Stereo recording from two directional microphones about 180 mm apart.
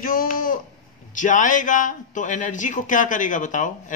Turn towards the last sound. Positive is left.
turn(degrees=45)  # may be behind; listen again after turning